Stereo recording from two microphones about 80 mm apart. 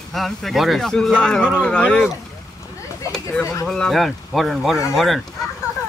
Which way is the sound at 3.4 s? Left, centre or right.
Left.